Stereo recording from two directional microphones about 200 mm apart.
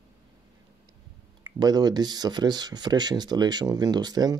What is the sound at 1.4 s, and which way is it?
Speech, 20° right (ahead or behind).